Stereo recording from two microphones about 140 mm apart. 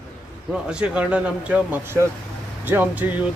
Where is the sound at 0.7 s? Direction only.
5° right (ahead or behind).